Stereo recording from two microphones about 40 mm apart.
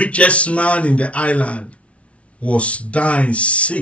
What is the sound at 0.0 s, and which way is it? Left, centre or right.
Speech, left.